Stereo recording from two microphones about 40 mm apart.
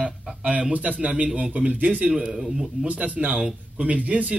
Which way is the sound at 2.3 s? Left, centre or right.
Centre.